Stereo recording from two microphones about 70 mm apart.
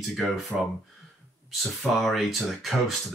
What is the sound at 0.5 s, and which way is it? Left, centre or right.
Speech, centre.